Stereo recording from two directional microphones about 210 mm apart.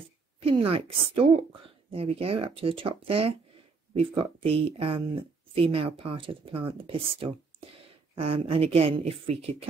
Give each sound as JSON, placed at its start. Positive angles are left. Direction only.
{"t": 0.4, "sound": "a woman's voice", "side_deg": -25}